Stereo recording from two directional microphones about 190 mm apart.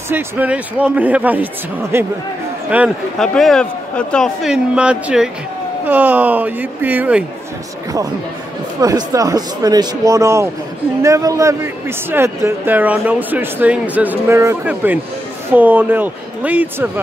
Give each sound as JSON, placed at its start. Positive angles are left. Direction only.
{"t": 0.1, "sound": "speech", "side_deg": -10}
{"t": 3.2, "sound": "a man's voice", "side_deg": 0}
{"t": 8.8, "sound": "speech", "side_deg": -20}